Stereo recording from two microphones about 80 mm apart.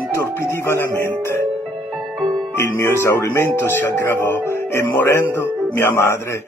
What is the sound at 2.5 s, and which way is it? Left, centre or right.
Speech, left.